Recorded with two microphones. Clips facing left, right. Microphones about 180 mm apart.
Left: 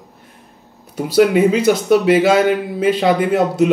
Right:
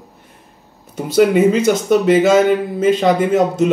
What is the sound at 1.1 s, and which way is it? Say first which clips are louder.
Speech: right 1 dB; 5° left (ahead or behind).